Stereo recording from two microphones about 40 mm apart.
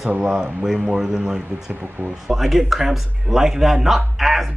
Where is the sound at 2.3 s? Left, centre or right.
Centre.